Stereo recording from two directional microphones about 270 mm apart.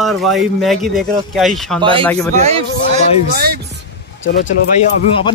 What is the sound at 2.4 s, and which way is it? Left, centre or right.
Speech, right.